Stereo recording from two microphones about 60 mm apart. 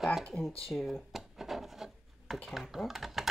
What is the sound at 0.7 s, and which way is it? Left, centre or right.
Rub, centre.